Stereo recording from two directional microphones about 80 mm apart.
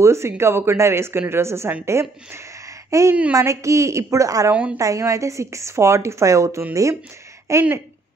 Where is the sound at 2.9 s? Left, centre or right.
Right.